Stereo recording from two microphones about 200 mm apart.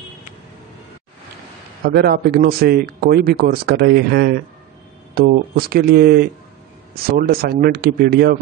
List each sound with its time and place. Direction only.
1.9 s speech: 55° right (ahead or behind)